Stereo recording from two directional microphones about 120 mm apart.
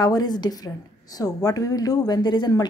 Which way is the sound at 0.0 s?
35° left (ahead or behind).